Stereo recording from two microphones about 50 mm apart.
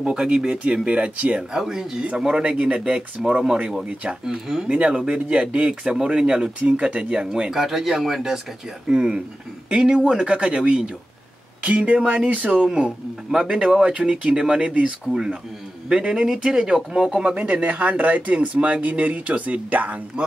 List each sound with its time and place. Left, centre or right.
0.0 s speech: centre
0.8 s speech: right
1.5 s speech: centre
7.5 s speech: centre; by 20.0 s right